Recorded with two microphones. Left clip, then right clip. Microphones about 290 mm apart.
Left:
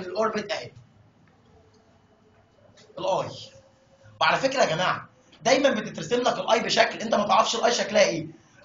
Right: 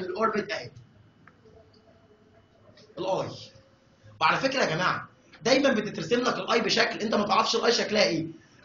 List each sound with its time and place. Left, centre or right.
0.3 s a man's voice: centre
3.0 s speech: left